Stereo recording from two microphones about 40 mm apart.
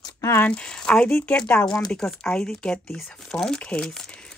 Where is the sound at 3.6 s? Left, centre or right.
Left.